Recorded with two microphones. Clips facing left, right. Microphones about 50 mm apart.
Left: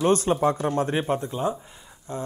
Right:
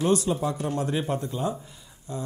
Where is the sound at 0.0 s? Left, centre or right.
Left.